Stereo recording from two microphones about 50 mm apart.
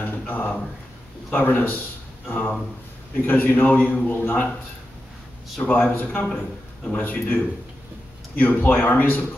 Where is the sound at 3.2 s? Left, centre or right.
Left.